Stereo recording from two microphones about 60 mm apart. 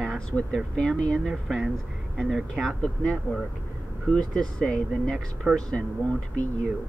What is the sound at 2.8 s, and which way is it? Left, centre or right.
Speech, centre.